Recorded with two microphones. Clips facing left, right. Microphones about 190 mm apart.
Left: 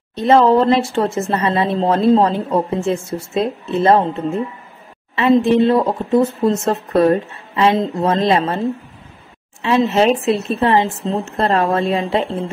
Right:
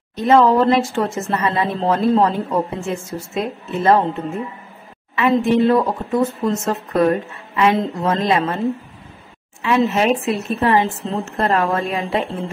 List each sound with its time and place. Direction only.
0.1 s speech: 30° left (ahead or behind)
5.1 s speech: 30° left (ahead or behind)
9.6 s speech: 30° left (ahead or behind)